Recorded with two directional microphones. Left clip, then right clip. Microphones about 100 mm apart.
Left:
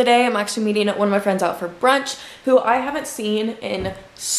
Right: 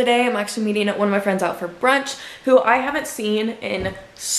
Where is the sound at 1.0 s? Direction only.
5° left (ahead or behind).